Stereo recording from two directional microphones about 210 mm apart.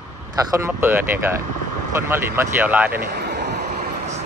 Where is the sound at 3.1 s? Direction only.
50° right (ahead or behind).